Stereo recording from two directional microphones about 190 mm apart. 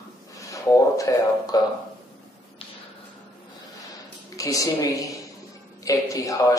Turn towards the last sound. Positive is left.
turn(degrees=15)  # may be behind; listen again after turning